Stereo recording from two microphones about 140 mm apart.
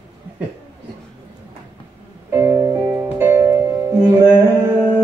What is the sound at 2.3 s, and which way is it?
Music, 25° right (ahead or behind).